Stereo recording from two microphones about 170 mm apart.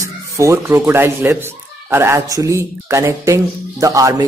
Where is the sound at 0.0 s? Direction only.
15° right (ahead or behind).